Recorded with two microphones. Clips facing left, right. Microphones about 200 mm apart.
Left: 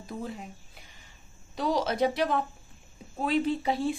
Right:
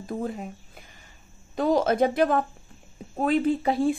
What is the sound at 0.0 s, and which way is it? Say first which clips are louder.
A woman's voice: right 6 dB; 50° right (ahead or behind).